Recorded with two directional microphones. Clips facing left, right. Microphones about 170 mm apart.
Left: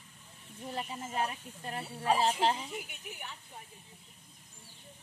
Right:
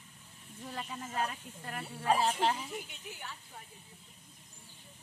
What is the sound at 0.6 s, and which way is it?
Speech, 20° left (ahead or behind).